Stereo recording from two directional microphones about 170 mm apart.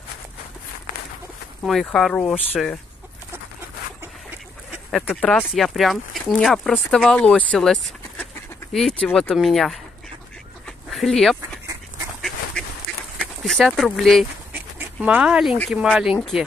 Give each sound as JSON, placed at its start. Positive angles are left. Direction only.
{"t": 1.6, "sound": "speech", "side_deg": 0}
{"t": 4.9, "sound": "speech", "side_deg": 5}
{"t": 10.9, "sound": "duck", "side_deg": 0}
{"t": 13.4, "sound": "speech", "side_deg": 5}
{"t": 14.5, "sound": "dog", "side_deg": -10}
{"t": 15.7, "sound": "speech", "side_deg": -5}